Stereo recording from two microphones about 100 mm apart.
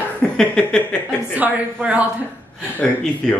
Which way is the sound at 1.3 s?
15° right (ahead or behind).